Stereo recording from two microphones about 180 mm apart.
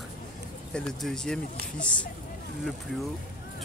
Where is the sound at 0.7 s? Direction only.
Centre (ahead or behind).